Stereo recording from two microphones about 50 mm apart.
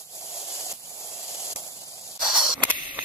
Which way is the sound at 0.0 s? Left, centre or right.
Left.